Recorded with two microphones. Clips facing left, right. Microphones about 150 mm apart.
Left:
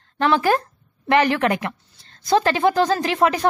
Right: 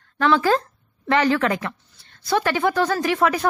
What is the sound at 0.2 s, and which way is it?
Speech, 20° left (ahead or behind).